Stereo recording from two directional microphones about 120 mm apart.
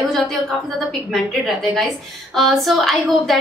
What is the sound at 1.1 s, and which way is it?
A woman's voice, centre (ahead or behind).